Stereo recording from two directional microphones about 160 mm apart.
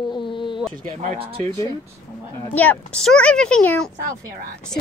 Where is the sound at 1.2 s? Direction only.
35° right (ahead or behind).